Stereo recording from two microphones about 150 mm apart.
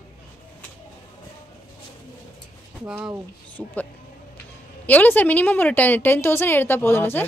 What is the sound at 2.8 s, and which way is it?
Speech, 5° right (ahead or behind).